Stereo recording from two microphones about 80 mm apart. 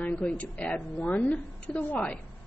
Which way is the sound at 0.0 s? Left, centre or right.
Centre.